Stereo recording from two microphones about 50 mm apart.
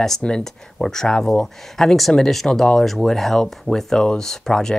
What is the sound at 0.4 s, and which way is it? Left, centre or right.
Speech, centre.